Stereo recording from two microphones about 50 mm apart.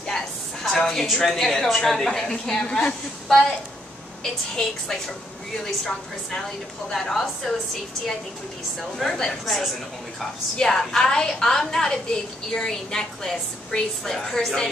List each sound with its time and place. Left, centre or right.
0.7 s a woman's voice: centre
8.9 s speech: centre
10.6 s a woman's voice: centre